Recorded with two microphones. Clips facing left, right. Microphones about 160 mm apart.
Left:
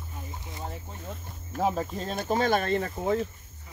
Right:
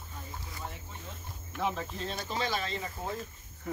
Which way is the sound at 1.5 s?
40° left (ahead or behind).